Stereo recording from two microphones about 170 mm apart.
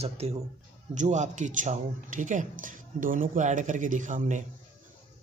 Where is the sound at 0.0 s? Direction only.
35° right (ahead or behind).